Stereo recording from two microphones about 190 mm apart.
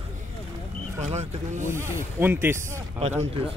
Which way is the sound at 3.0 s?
30° right (ahead or behind).